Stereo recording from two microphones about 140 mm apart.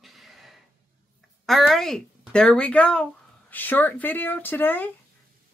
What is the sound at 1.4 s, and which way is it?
Speech, centre (ahead or behind).